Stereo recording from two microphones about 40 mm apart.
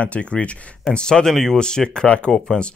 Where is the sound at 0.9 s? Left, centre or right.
Left.